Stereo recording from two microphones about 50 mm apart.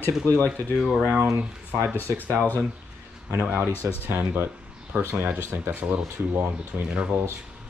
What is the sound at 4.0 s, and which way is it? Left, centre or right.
Speech, right.